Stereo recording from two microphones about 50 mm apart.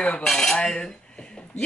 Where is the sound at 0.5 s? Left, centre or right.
Centre.